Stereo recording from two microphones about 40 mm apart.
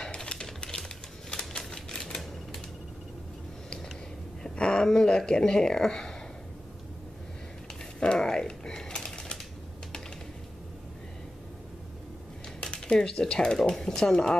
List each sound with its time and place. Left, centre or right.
0.0 s typewriter: left
1.7 s typewriter: centre
4.4 s a sound: left
4.8 s speech: centre
8.0 s mechanisms: centre
12.5 s speech: left